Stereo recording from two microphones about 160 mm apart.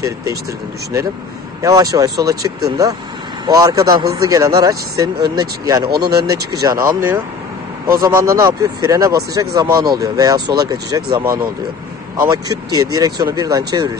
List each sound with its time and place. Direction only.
0.0 s speech: 20° right (ahead or behind)
1.6 s speech: 20° right (ahead or behind)
6.0 s speech: 80° right
6.5 s speech: 25° right (ahead or behind)
8.4 s speech: 20° right (ahead or behind)